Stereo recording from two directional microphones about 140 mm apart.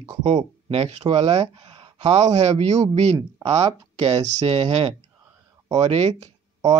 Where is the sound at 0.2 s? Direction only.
50° right (ahead or behind).